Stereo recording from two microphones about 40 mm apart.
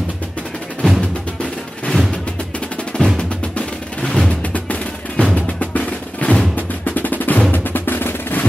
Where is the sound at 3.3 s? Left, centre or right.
Left.